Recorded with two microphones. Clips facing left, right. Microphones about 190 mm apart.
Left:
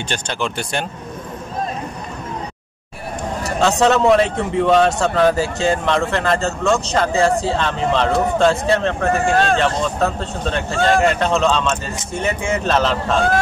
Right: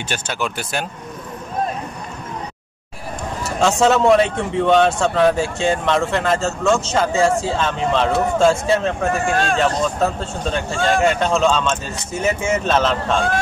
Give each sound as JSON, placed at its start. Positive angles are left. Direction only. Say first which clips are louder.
{"t": 0.1, "sound": "speech", "louder": "even", "side_deg": -5}
{"t": 3.8, "sound": "speech", "louder": "even", "side_deg": 0}
{"t": 9.2, "sound": "speech", "louder": "left 3 dB", "side_deg": 35}
{"t": 9.6, "sound": "speech", "louder": "even", "side_deg": 0}